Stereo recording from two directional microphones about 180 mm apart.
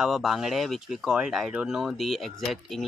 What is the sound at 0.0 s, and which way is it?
Speech, centre (ahead or behind).